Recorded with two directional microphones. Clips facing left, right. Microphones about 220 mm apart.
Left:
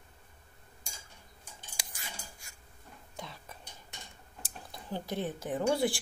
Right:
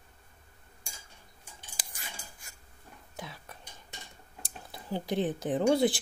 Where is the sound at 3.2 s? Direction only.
Centre (ahead or behind).